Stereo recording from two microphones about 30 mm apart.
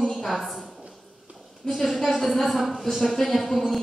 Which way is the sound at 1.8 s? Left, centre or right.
Centre.